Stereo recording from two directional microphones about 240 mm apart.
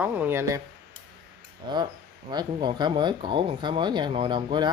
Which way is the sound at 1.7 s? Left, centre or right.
Centre.